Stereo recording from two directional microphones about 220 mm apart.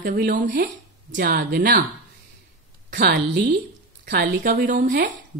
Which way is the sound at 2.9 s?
45° right (ahead or behind).